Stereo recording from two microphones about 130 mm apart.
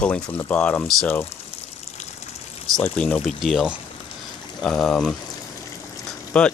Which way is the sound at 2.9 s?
10° left (ahead or behind).